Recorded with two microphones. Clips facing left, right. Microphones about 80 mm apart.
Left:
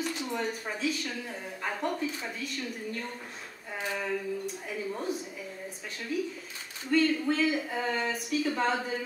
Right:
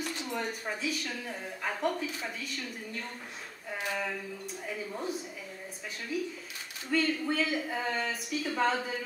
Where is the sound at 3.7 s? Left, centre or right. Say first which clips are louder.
Left 2 dB; centre.